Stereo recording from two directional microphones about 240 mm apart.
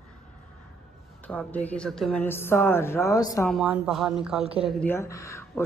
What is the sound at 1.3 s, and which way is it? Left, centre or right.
A woman's voice, centre.